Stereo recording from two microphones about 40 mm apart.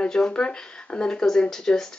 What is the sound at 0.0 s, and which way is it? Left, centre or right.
Speech, left.